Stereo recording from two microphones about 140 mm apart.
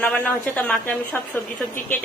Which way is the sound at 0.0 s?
10° left (ahead or behind).